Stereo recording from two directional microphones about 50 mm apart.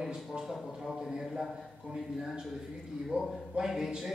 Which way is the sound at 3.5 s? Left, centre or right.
Centre.